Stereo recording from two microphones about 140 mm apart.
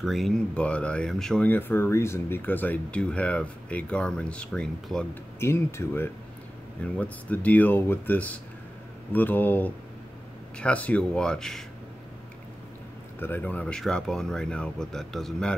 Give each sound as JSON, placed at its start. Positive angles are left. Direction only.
{"t": 0.0, "sound": "speech", "side_deg": 0}
{"t": 5.4, "sound": "speech", "side_deg": 20}
{"t": 13.2, "sound": "speech", "side_deg": 10}